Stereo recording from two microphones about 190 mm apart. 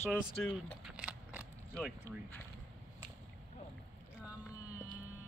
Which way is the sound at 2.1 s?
15° right (ahead or behind).